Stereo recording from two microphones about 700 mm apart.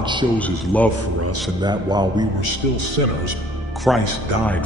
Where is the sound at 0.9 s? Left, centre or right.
Centre.